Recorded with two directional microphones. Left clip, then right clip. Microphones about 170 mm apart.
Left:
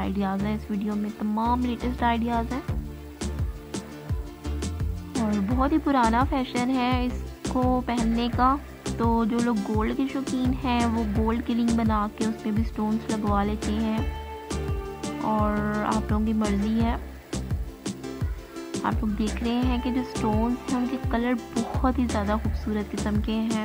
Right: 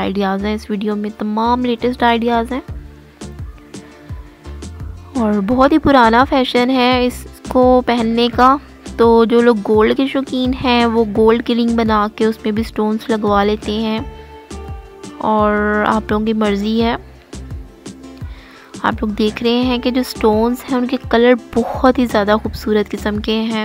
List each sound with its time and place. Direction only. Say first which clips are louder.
0.0 s speech: right 11 dB; 40° right (ahead or behind)
5.2 s a woman's voice: right 13 dB; 45° right (ahead or behind)
14.5 s music: left 2 dB; centre (ahead or behind)
15.2 s a woman's voice: right 13 dB; 45° right (ahead or behind)
18.9 s a woman's voice: right 13 dB; 45° right (ahead or behind)